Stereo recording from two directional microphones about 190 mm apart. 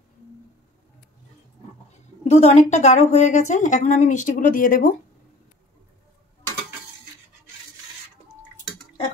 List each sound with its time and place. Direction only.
2.2 s a woman's voice: 35° left (ahead or behind)